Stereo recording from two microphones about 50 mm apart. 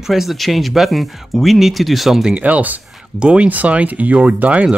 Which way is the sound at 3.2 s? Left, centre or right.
Right.